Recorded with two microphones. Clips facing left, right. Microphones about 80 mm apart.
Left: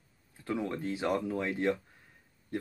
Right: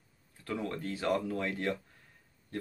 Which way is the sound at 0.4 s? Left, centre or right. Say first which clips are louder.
Left 2 dB; centre.